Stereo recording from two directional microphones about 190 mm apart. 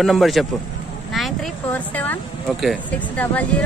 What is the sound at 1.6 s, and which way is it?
Speech, 10° left (ahead or behind).